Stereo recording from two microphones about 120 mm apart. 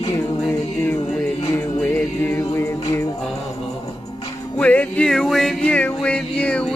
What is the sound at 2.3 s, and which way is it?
Music, 25° left (ahead or behind).